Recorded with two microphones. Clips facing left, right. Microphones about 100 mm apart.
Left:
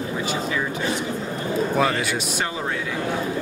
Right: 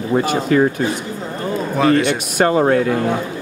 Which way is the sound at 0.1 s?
55° right (ahead or behind).